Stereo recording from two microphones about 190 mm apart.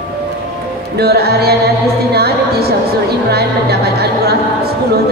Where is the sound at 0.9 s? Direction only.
55° right (ahead or behind).